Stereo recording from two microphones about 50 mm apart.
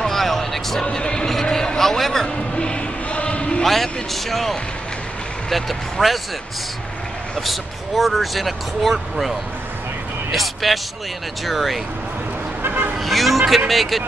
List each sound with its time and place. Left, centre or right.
0.0 s a sound: centre
2.5 s a sound: left
3.6 s speech: centre
7.3 s speech: centre
10.3 s speech: centre
12.6 s vehicle: right
13.0 s speech: centre